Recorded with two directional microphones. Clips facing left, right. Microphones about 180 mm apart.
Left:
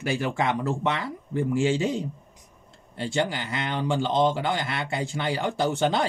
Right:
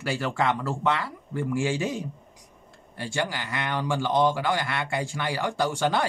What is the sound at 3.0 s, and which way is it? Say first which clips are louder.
Speech: left 3 dB; 20° left (ahead or behind).